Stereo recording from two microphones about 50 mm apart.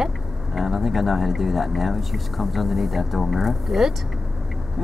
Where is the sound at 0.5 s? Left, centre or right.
Centre.